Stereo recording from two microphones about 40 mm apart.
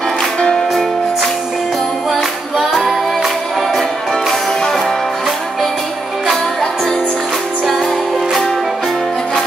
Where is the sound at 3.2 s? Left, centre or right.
Centre.